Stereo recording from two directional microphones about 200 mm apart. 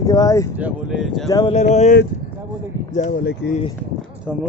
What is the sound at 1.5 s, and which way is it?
Speech, 35° left (ahead or behind).